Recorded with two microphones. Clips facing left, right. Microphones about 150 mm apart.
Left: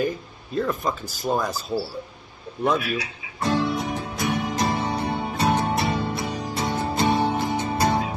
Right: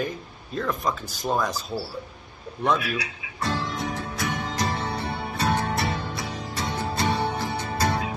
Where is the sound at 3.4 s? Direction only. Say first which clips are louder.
Left 5 dB; 20° left (ahead or behind).